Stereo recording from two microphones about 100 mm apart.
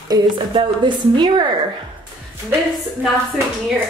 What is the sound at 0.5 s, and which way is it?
Speech, 50° right (ahead or behind).